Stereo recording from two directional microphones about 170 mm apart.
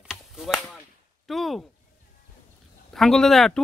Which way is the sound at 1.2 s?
Centre (ahead or behind).